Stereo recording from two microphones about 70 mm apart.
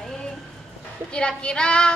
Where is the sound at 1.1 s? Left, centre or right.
Centre.